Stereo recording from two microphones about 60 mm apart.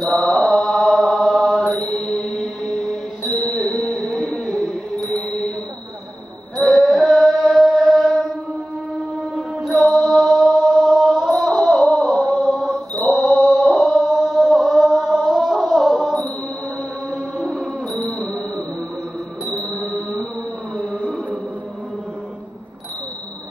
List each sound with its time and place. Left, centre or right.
0.2 s mantra: centre
3.4 s music: centre
6.5 s mantra: centre
9.8 s chant: centre
12.4 s mantra: centre
14.0 s chant: centre
17.5 s music: centre
19.5 s music: left